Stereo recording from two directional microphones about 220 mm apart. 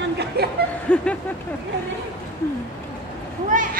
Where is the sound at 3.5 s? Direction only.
35° right (ahead or behind).